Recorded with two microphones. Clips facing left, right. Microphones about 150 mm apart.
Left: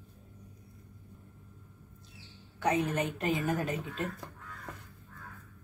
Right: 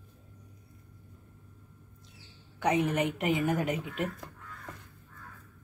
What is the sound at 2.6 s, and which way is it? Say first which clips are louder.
A woman's voice: right 2 dB; 20° right (ahead or behind).